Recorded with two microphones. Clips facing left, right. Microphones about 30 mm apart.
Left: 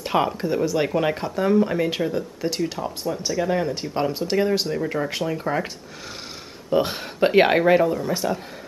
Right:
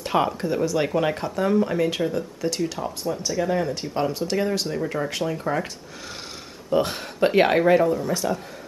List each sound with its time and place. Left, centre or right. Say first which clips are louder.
0.0 s speech: left 1 dB; centre
6.7 s speech: left 1 dB; centre